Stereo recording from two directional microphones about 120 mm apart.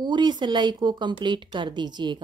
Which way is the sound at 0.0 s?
40° right (ahead or behind).